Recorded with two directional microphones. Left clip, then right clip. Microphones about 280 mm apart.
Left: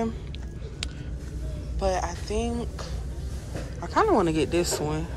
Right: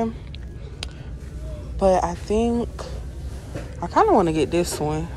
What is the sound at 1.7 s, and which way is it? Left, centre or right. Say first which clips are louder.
Speech: right 8 dB; centre.